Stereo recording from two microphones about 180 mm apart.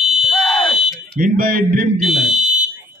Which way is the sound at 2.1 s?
40° right (ahead or behind).